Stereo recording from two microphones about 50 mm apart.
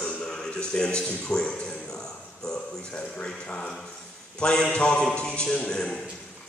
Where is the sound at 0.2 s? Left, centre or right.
Centre.